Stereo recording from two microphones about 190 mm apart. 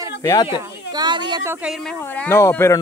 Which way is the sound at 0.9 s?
25° right (ahead or behind).